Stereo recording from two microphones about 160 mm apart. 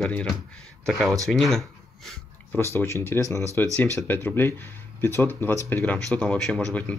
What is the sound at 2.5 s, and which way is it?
Speech, 15° left (ahead or behind).